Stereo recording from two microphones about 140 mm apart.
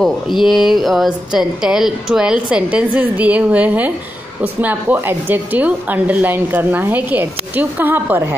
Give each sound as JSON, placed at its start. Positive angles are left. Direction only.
{"t": 0.4, "sound": "a woman's voice", "side_deg": 0}